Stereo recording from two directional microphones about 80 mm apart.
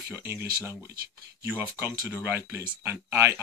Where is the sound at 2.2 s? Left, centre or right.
Right.